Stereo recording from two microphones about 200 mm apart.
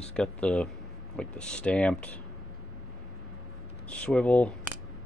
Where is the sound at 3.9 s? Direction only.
5° left (ahead or behind).